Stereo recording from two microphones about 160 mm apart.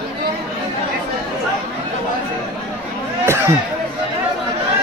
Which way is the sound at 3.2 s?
15° right (ahead or behind).